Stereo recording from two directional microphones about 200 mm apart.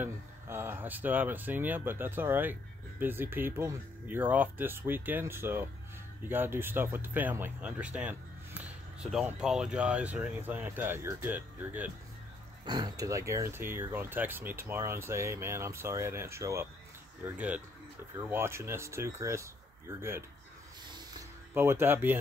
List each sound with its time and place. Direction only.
0.0 s speech: 10° right (ahead or behind)
12.6 s speech: 20° right (ahead or behind)
20.8 s vehicle: 20° right (ahead or behind)
21.5 s speech: 10° right (ahead or behind)